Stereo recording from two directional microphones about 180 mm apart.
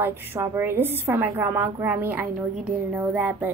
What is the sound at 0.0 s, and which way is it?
Speech, 10° right (ahead or behind).